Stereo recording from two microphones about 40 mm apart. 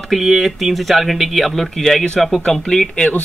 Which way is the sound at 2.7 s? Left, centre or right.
Centre.